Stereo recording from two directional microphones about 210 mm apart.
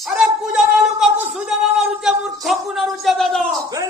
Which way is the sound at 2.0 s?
Centre (ahead or behind).